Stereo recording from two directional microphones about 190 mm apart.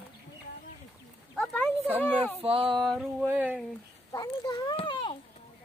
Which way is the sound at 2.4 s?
30° right (ahead or behind).